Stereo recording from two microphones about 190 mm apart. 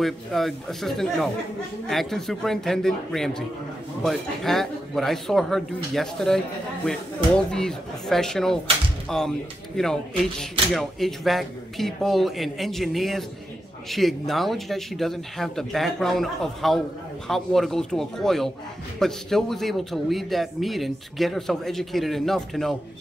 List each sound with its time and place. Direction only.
0.0 s speech: centre (ahead or behind)
10.7 s speech: centre (ahead or behind)